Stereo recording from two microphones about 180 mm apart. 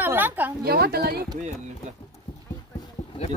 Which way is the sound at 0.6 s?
60° right (ahead or behind).